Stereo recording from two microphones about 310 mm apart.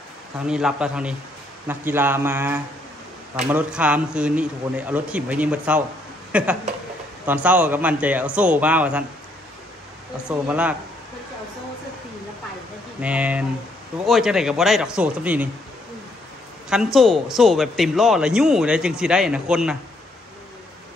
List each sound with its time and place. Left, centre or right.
0.4 s a man's voice: centre
10.2 s a man's voice: centre
13.0 s a man's voice: centre
16.6 s a man's voice: centre